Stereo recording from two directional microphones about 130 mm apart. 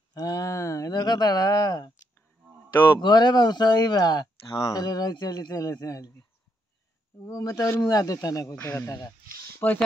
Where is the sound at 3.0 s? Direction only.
35° left (ahead or behind).